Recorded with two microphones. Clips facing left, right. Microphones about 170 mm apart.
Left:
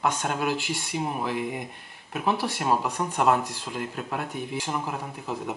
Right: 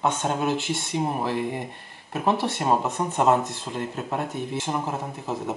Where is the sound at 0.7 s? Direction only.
10° left (ahead or behind).